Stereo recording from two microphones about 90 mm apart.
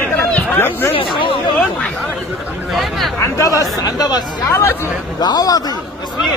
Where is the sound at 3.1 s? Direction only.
35° left (ahead or behind).